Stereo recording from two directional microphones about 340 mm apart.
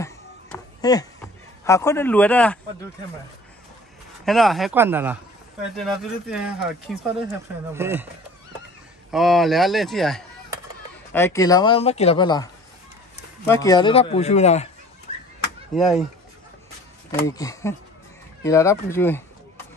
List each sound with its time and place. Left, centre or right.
0.0 s music: centre
4.3 s speech: centre
9.1 s speech: centre
13.5 s speech: centre
15.7 s speech: centre
17.1 s speech: centre